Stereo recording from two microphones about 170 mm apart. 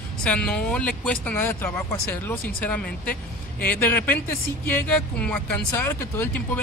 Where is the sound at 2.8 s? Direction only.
60° left (ahead or behind).